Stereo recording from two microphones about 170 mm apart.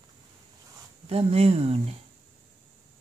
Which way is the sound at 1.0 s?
35° right (ahead or behind).